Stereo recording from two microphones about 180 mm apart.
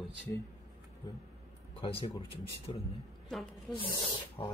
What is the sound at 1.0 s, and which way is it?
A man's voice, 20° left (ahead or behind).